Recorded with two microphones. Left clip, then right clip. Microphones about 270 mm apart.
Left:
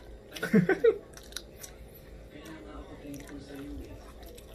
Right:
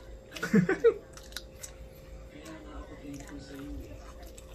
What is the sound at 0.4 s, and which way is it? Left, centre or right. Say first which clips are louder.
Speech: left 1 dB; centre.